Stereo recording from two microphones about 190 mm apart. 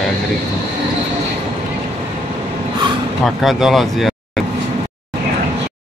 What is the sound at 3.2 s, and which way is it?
Speech, centre (ahead or behind).